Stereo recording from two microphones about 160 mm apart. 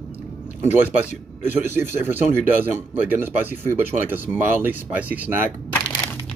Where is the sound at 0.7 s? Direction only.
10° right (ahead or behind).